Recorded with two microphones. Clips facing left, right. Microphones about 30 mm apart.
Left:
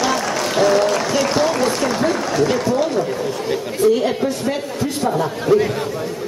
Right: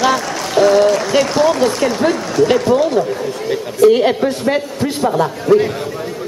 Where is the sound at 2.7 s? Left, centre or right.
Right.